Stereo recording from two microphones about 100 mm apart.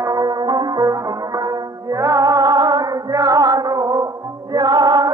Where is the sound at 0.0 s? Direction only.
40° right (ahead or behind).